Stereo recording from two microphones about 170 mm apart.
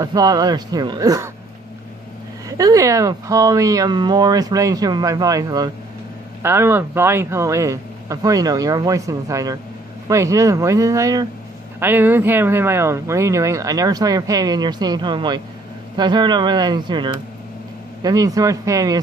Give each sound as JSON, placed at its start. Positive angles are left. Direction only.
{"t": 0.0, "sound": "speech", "side_deg": -20}
{"t": 2.5, "sound": "speech", "side_deg": -20}